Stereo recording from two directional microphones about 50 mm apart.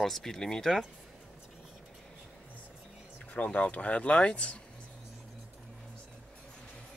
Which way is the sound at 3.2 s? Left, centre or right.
Left.